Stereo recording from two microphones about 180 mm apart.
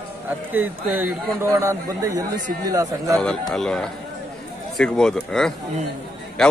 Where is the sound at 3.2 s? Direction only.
5° left (ahead or behind).